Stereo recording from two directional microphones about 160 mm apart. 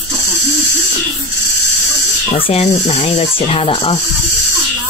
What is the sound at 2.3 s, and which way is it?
Speech, 40° left (ahead or behind).